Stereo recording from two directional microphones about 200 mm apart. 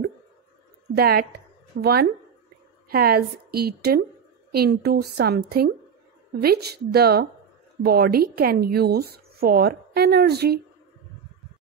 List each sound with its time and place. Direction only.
0.9 s a woman's voice: 50° right (ahead or behind)